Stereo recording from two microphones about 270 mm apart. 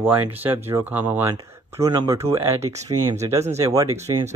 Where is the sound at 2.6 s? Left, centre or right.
Right.